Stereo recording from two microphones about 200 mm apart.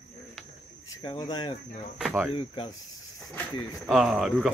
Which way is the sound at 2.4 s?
25° left (ahead or behind).